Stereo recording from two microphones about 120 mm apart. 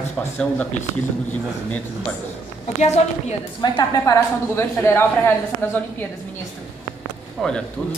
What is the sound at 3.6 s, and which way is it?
Speech, 35° left (ahead or behind).